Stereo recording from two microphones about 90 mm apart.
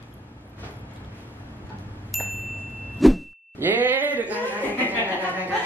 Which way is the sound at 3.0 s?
Centre (ahead or behind).